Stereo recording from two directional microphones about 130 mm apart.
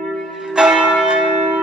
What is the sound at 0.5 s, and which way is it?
Church bell, 5° right (ahead or behind).